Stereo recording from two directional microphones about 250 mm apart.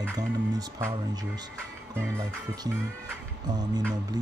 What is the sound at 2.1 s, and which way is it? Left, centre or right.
Speech, centre.